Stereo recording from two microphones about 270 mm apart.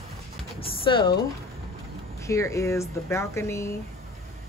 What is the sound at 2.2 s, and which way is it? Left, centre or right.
Speech, centre.